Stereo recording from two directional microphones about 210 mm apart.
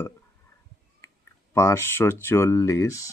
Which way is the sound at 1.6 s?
15° left (ahead or behind).